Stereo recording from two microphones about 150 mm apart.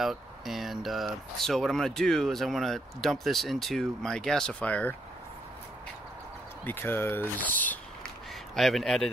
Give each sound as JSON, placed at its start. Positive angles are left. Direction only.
{"t": 0.0, "sound": "speech", "side_deg": 0}
{"t": 6.6, "sound": "speech", "side_deg": 15}
{"t": 8.5, "sound": "speech", "side_deg": 0}